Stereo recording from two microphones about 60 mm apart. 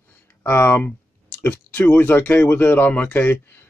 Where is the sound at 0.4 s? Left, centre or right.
Left.